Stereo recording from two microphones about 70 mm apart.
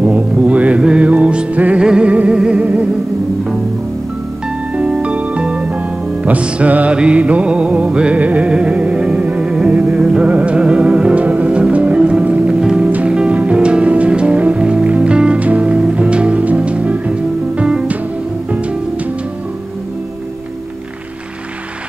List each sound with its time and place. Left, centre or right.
0.0 s music: centre
4.7 s music: centre
10.2 s music: centre
11.4 s music: centre